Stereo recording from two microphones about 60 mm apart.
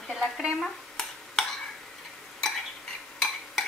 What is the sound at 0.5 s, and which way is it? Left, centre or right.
Dishes, centre.